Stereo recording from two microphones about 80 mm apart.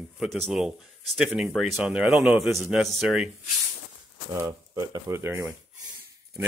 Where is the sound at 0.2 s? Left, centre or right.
Centre.